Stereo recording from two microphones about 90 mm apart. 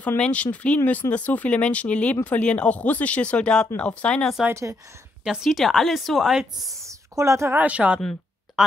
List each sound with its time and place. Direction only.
0.2 s speech: 15° left (ahead or behind)
4.5 s a woman's voice: 35° right (ahead or behind)
5.2 s a woman's voice: 5° right (ahead or behind)
6.9 s a sound: 35° right (ahead or behind)
7.5 s speech: 15° right (ahead or behind)